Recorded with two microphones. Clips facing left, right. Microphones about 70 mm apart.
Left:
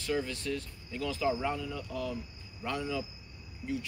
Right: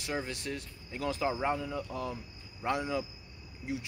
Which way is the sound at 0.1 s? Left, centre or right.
Right.